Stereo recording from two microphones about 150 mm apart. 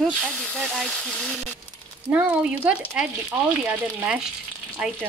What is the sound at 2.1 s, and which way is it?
Speech, 10° right (ahead or behind).